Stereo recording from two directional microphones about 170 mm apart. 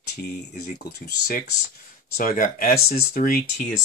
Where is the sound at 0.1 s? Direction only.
75° left (ahead or behind).